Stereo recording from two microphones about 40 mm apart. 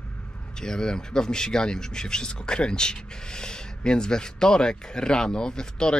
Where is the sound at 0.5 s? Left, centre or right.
Centre.